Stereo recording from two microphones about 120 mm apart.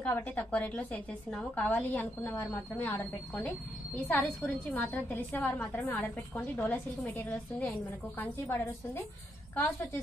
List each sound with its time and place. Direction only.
0.0 s a woman's voice: 15° left (ahead or behind)